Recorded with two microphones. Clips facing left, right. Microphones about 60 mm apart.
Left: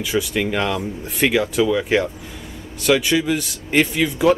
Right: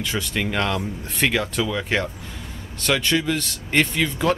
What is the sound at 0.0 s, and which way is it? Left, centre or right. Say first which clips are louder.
A man's voice: left 4 dB; centre.